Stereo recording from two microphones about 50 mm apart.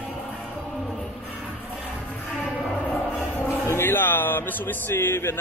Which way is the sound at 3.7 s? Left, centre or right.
Left.